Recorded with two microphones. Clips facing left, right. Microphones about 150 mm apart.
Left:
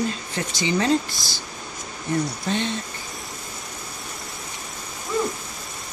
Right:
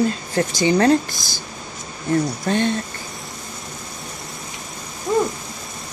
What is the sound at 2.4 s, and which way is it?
Speech, 50° right (ahead or behind).